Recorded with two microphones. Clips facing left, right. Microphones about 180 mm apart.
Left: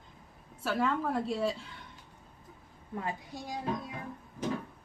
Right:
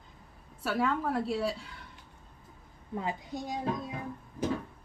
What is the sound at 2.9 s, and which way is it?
A child's voice, 20° right (ahead or behind).